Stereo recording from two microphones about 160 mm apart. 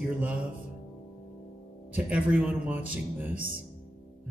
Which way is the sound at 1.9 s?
10° right (ahead or behind).